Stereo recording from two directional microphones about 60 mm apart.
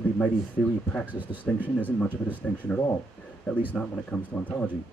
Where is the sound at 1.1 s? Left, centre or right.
Right.